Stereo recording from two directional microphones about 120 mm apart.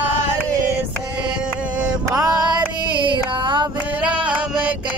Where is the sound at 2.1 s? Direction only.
30° right (ahead or behind).